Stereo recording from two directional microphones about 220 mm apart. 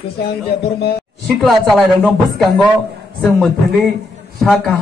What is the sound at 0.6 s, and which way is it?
Speech, 45° left (ahead or behind).